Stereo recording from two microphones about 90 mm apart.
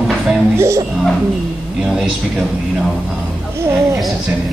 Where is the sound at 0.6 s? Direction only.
35° right (ahead or behind).